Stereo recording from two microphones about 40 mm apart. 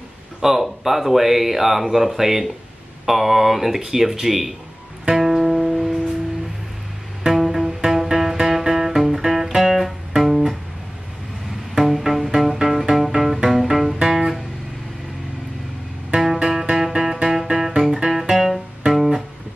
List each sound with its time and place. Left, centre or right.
0.4 s speech: centre
5.1 s music: centre
7.2 s music: centre
9.7 s music: centre
11.7 s music: centre
16.7 s music: centre